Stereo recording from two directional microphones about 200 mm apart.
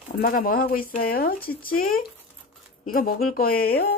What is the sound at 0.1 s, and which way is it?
Speech, 45° left (ahead or behind).